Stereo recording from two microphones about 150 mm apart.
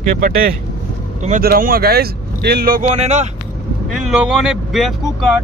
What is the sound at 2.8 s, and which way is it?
Speech, 45° right (ahead or behind).